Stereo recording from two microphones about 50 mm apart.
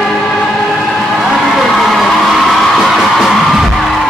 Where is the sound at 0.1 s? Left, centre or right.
Centre.